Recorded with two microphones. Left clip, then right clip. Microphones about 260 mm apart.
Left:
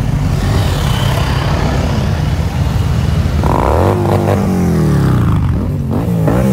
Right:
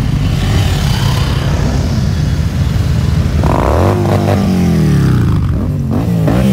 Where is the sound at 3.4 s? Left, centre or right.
Centre; by 5.5 s left.